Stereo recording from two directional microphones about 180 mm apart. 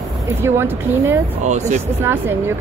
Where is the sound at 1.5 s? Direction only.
40° right (ahead or behind).